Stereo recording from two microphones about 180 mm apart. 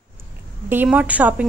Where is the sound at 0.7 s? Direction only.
10° right (ahead or behind).